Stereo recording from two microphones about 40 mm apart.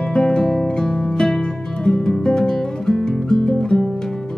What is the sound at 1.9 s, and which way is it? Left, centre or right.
Guitar, centre.